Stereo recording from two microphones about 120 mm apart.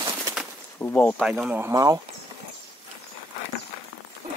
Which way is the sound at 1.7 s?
35° right (ahead or behind).